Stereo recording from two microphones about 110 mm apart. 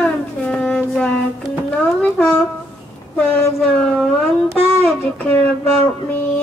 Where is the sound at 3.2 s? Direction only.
5° left (ahead or behind).